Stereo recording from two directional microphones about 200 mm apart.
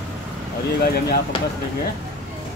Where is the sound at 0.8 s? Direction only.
50° left (ahead or behind).